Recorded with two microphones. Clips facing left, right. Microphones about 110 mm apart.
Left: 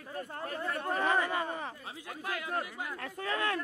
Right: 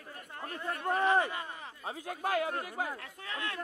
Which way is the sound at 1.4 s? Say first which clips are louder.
Left 7 dB; 45° left (ahead or behind).